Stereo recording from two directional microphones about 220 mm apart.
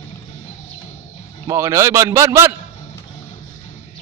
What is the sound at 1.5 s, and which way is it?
A man's voice, 15° right (ahead or behind).